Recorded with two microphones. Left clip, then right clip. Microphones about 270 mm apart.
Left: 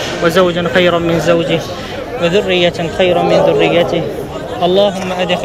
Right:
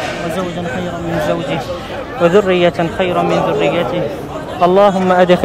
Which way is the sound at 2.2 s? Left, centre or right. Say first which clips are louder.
Right 1 dB; centre.